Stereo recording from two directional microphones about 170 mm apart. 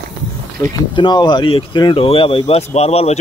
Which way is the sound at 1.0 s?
25° left (ahead or behind).